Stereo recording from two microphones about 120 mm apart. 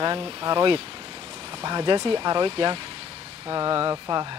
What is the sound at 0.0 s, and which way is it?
Speech, 40° right (ahead or behind).